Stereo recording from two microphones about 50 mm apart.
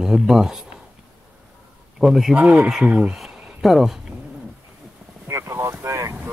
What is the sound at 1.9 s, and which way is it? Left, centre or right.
Speech, centre.